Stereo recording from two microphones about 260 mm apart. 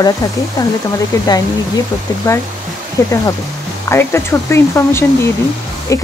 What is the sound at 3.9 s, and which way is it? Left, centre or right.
Speech, centre.